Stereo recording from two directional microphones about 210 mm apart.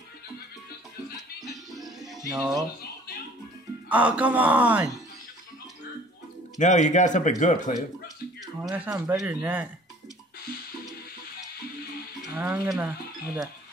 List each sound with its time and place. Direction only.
1.1 s music: centre (ahead or behind)
3.9 s speech: 5° right (ahead or behind)
6.6 s speech: 35° left (ahead or behind)
8.6 s speech: 10° right (ahead or behind)
12.2 s speech: 5° right (ahead or behind)